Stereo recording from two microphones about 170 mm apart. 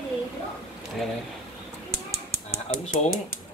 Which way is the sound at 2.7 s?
35° left (ahead or behind).